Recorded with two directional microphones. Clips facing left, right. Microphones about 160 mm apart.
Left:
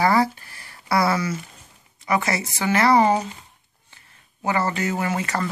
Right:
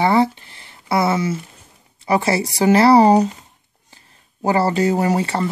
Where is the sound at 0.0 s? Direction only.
25° right (ahead or behind).